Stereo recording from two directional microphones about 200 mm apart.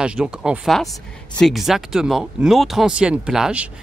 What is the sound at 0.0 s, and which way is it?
Speech, 5° right (ahead or behind).